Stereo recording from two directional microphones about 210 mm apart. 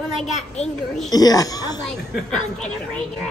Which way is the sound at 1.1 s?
15° left (ahead or behind).